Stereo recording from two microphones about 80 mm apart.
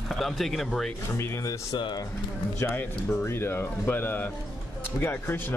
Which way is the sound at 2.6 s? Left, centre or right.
Left.